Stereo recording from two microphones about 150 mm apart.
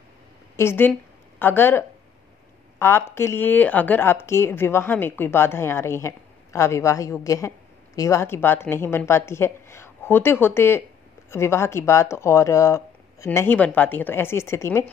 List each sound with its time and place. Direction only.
0.6 s speech: 15° left (ahead or behind)